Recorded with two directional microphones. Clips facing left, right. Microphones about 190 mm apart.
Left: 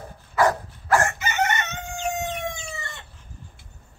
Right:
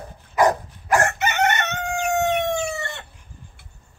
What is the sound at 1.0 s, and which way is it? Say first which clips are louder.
Chicken: right 4 dB; 70° right (ahead or behind).